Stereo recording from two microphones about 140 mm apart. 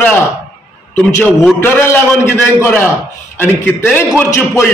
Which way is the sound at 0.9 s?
10° left (ahead or behind).